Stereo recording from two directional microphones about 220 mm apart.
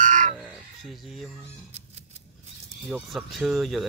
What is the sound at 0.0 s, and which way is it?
Frog, 35° right (ahead or behind).